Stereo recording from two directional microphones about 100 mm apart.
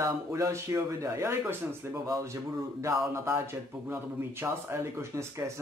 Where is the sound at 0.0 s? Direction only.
30° right (ahead or behind).